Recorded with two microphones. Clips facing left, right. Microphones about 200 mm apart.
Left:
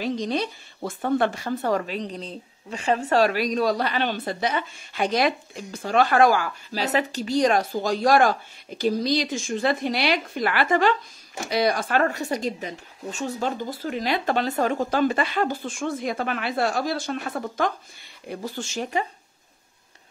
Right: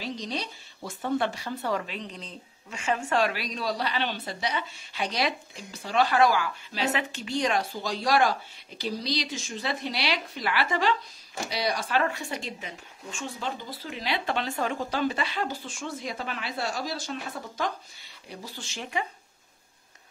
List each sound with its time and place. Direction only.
0.0 s speech: 55° left (ahead or behind)